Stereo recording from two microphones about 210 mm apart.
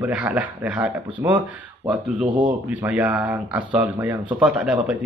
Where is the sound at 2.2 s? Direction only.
25° right (ahead or behind).